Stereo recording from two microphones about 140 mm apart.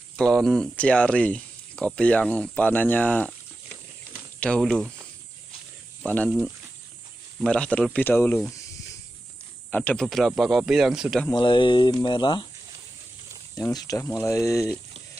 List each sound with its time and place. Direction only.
0.2 s speech: centre (ahead or behind)
4.4 s speech: 5° left (ahead or behind)
6.0 s speech: 10° left (ahead or behind)
7.4 s speech: 10° left (ahead or behind)
9.7 s speech: 10° left (ahead or behind)
11.3 s speech: 35° left (ahead or behind)
13.6 s speech: 25° left (ahead or behind)